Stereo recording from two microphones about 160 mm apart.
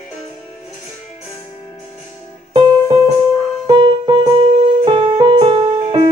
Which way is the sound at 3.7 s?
30° right (ahead or behind).